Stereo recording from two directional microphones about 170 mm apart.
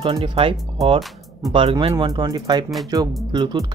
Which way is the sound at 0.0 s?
35° right (ahead or behind).